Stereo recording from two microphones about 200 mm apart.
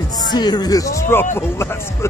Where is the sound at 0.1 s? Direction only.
20° left (ahead or behind).